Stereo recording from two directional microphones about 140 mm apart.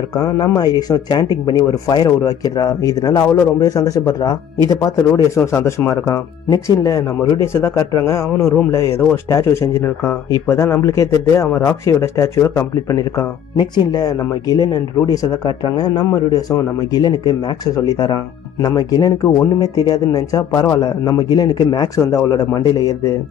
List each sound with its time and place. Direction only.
0.1 s speech: 25° left (ahead or behind)